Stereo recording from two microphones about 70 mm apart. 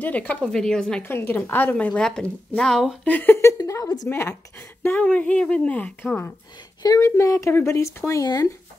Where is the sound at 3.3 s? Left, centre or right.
Left.